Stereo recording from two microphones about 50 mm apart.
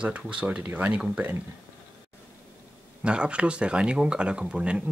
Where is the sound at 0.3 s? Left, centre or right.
Right.